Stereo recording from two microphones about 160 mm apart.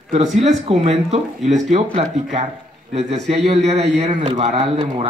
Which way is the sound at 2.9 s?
45° right (ahead or behind).